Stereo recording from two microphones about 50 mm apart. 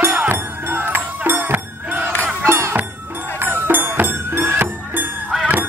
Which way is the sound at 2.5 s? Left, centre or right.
Right.